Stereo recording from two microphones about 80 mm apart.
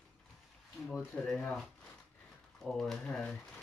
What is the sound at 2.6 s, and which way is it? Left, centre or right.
Speech, centre.